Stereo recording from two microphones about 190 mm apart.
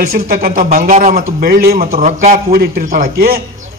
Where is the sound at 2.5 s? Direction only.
50° right (ahead or behind).